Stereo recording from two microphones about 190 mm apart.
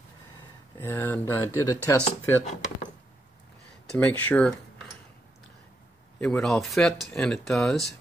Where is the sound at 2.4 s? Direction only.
40° left (ahead or behind).